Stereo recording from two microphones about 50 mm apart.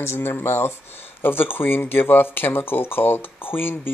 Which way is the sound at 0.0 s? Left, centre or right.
Left.